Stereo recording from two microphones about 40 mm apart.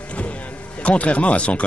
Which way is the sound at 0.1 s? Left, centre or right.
Left.